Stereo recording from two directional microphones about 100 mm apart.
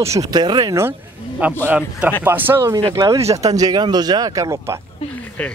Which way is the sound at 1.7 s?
15° right (ahead or behind).